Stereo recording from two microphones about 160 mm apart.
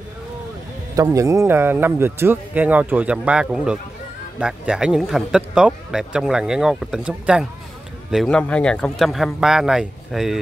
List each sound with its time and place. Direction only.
0.9 s a man's voice: 20° right (ahead or behind); by 10.4 s centre (ahead or behind)